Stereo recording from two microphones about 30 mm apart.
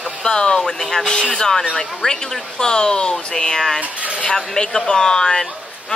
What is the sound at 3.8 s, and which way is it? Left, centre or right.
Speech, right.